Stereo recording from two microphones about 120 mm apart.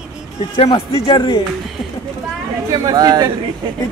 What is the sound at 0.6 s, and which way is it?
Speech, 50° left (ahead or behind).